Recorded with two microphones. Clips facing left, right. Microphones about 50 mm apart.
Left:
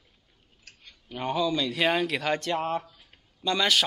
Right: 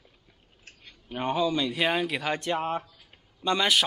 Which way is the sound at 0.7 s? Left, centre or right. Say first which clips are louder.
Right 2 dB; right.